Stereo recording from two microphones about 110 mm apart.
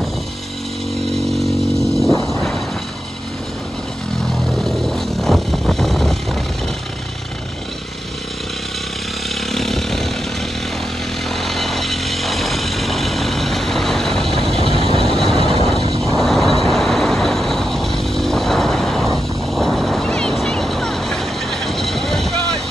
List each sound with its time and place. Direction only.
2.2 s a sound: centre (ahead or behind)
4.5 s vehicle: centre (ahead or behind)
9.3 s chainsaw: centre (ahead or behind)
11.2 s vehicle: centre (ahead or behind)
14.8 s vehicle: 60° right (ahead or behind)
15.0 s vehicle: 5° left (ahead or behind)